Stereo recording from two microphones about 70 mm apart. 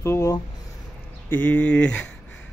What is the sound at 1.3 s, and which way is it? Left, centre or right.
Speech, left.